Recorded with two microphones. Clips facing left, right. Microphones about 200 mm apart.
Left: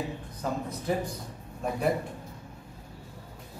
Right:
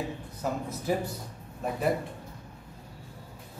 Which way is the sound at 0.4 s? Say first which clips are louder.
Even; 5° right (ahead or behind).